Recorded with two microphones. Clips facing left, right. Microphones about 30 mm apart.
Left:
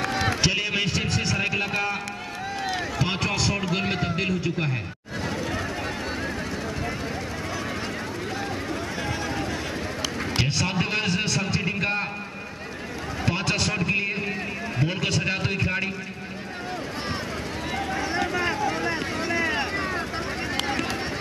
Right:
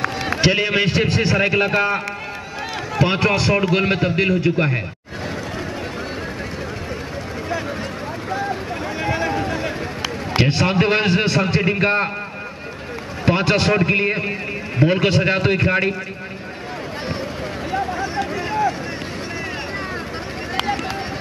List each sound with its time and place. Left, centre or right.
0.3 s a man's voice: right
3.0 s a man's voice: right
9.0 s a sound: right
10.3 s a man's voice: right
13.2 s a man's voice: right
17.9 s vehicle: centre